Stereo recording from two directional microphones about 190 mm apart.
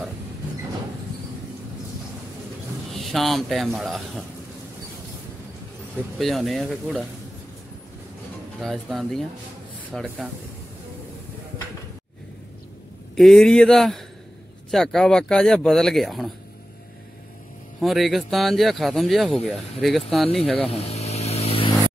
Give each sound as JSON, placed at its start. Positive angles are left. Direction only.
{"t": 2.9, "sound": "speech", "side_deg": 0}
{"t": 6.1, "sound": "speech", "side_deg": 0}
{"t": 8.5, "sound": "speech", "side_deg": 0}
{"t": 13.1, "sound": "speech", "side_deg": 0}
{"t": 17.7, "sound": "speech", "side_deg": 0}
{"t": 20.5, "sound": "vehicle", "side_deg": 30}